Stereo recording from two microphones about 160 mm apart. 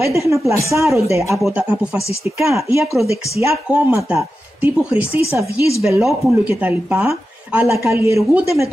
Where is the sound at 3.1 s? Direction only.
20° right (ahead or behind).